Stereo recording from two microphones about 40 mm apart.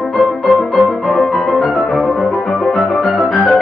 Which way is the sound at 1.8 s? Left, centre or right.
Left.